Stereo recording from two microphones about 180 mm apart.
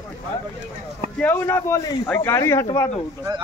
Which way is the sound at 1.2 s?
10° left (ahead or behind).